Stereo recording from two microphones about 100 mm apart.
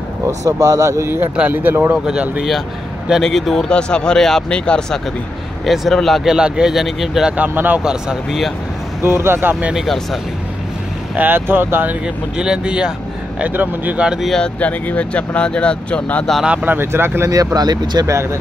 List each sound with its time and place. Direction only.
0.5 s a man's voice: 35° right (ahead or behind); by 2.4 s 10° right (ahead or behind)
3.1 s speech: centre (ahead or behind)
7.3 s speech: 15° right (ahead or behind)
7.8 s speech: 5° right (ahead or behind)
9.0 s speech: 25° right (ahead or behind)
11.1 s speech: 20° right (ahead or behind)
12.4 s speech: 10° right (ahead or behind)
14.3 s speech: 10° left (ahead or behind)
16.4 s speech: 20° right (ahead or behind)
17.3 s a man's voice: 35° right (ahead or behind)
18.0 s speech: 30° right (ahead or behind)